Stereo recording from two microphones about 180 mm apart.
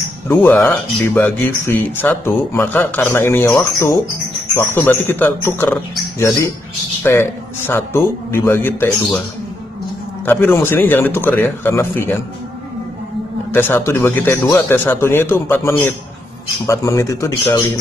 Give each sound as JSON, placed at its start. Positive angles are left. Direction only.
{"t": 0.4, "sound": "speech", "side_deg": 5}
{"t": 10.4, "sound": "speech", "side_deg": 10}
{"t": 13.5, "sound": "speech", "side_deg": 10}